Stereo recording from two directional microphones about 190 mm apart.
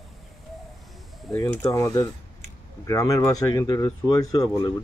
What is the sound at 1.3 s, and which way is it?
Speech, 15° left (ahead or behind).